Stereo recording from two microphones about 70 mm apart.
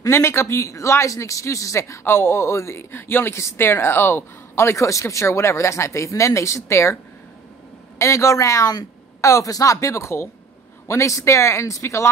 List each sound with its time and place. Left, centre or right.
0.0 s a man's voice: left
8.0 s a man's voice: left